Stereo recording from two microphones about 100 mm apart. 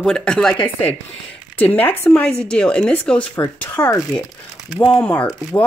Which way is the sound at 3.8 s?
35° left (ahead or behind).